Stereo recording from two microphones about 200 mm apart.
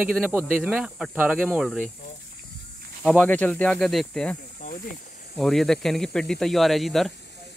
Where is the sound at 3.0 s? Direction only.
5° left (ahead or behind).